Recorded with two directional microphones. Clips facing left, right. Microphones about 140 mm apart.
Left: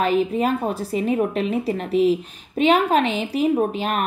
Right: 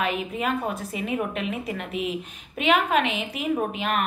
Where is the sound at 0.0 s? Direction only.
35° left (ahead or behind).